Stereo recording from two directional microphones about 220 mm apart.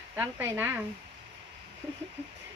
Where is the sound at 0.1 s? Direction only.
10° right (ahead or behind).